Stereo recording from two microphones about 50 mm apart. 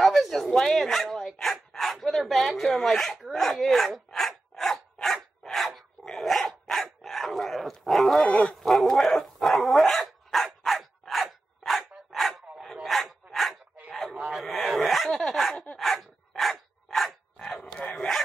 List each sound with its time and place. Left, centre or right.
0.0 s speech: centre
4.1 s filing: centre
5.0 s dog: centre
8.3 s dog: left
8.5 s dog: centre
10.8 s a sound: centre
12.8 s dog: centre
14.8 s a sound: centre
15.5 s dog: left
15.8 s dog: centre
17.4 s a sound: centre
17.8 s dog: centre